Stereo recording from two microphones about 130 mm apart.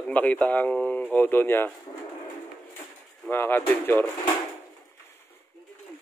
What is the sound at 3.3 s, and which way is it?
Speech, 15° left (ahead or behind).